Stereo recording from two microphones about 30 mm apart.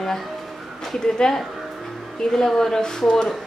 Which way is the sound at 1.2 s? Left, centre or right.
Centre.